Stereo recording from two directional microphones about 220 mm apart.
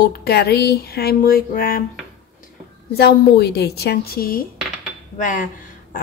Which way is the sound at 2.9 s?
45° left (ahead or behind).